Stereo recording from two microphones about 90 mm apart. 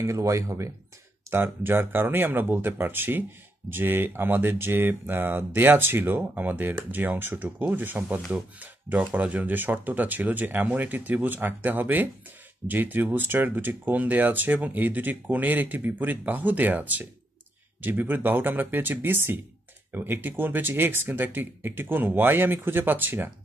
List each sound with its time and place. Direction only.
0.0 s speech: 35° right (ahead or behind)
1.3 s speech: 25° right (ahead or behind)